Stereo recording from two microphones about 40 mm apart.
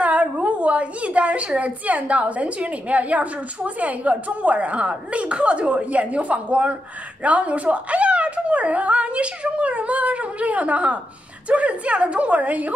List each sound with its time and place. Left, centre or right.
0.0 s a woman's voice: right